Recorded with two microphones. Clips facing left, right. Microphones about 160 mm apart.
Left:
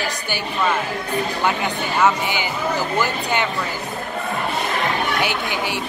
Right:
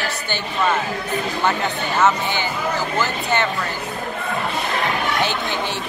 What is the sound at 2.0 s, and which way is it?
Speech, 15° left (ahead or behind).